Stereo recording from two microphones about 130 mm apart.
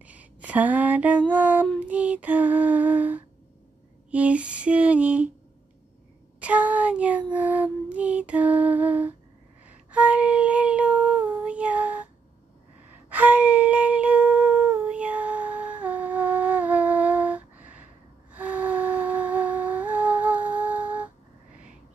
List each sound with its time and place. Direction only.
0.0 s speech: 10° right (ahead or behind)
1.3 s a sound: 10° right (ahead or behind)
6.4 s a sound: 10° right (ahead or behind)
9.8 s child singing: 10° right (ahead or behind)
13.1 s humming: 15° right (ahead or behind)
18.3 s music: 10° right (ahead or behind)